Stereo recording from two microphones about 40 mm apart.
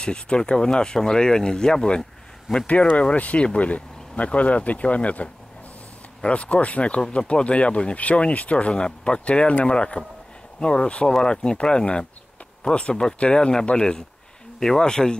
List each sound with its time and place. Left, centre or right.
0.0 s speech: left
2.6 s speech: left; by 15.1 s centre